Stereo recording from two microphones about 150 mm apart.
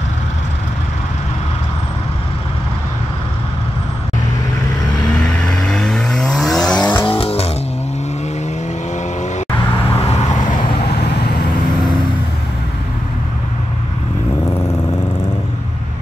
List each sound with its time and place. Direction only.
5.2 s vehicle: 5° left (ahead or behind)
7.1 s vehicle: 40° left (ahead or behind)
9.8 s vehicle: 15° left (ahead or behind)